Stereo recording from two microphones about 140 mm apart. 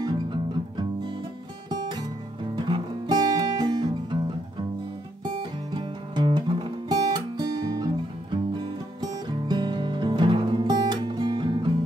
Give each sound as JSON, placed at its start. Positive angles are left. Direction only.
{"t": 1.7, "sound": "music", "side_deg": -30}
{"t": 5.4, "sound": "music", "side_deg": -35}